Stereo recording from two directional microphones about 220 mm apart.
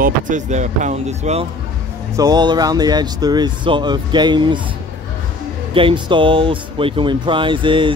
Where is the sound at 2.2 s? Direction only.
20° right (ahead or behind).